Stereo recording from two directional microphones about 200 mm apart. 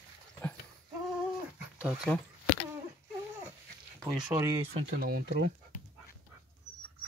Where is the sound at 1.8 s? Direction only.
Centre (ahead or behind).